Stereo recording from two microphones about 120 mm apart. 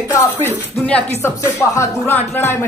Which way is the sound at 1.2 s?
25° left (ahead or behind).